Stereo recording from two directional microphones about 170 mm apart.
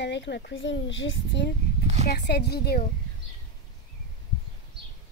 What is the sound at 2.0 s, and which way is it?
Speech, 70° left (ahead or behind).